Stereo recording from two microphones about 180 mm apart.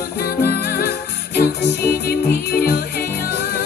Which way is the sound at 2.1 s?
55° left (ahead or behind).